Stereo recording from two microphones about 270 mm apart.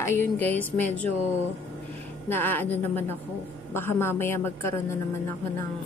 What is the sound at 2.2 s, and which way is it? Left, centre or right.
Speech, centre.